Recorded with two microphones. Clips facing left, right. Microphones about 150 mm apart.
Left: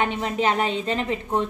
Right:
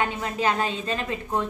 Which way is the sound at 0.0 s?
20° left (ahead or behind).